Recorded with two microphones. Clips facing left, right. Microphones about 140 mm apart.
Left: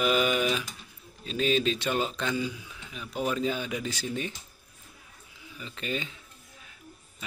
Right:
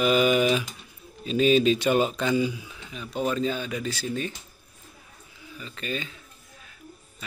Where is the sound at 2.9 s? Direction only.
5° left (ahead or behind).